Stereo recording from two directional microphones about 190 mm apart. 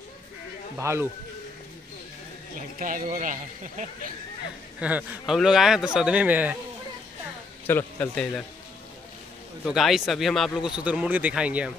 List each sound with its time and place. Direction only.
0.7 s speech: 15° right (ahead or behind)
2.8 s speech: 45° right (ahead or behind)
4.7 s speech: 5° right (ahead or behind)
7.6 s a man's voice: 10° left (ahead or behind)
9.7 s speech: centre (ahead or behind)